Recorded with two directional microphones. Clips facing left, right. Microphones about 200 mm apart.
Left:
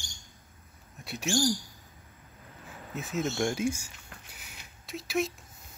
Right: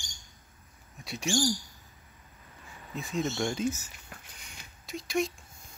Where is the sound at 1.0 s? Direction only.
Centre (ahead or behind).